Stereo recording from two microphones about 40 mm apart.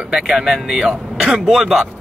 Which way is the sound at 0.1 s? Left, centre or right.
Centre.